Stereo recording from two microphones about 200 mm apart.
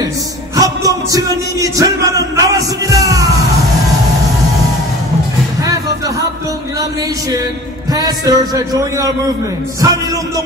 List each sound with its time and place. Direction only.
0.6 s music: 15° right (ahead or behind)
7.9 s a man's voice: 20° right (ahead or behind)
9.8 s music: 15° right (ahead or behind)